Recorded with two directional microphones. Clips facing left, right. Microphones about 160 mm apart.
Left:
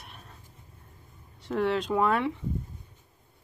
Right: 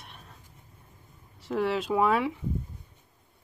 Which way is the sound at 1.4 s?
Centre (ahead or behind).